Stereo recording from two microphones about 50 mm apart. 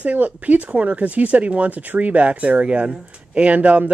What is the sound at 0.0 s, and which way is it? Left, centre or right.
Speech, right.